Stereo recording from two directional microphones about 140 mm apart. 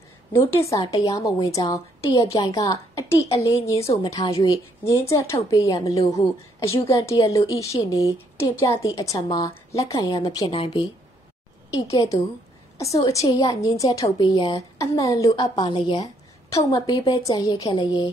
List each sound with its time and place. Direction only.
0.3 s a woman's voice: 20° left (ahead or behind)
10.5 s speech: 40° left (ahead or behind)
11.7 s a woman's voice: 25° left (ahead or behind)
14.1 s a woman's voice: 35° left (ahead or behind)
15.5 s a woman's voice: 35° left (ahead or behind)
16.4 s a woman's voice: 25° left (ahead or behind)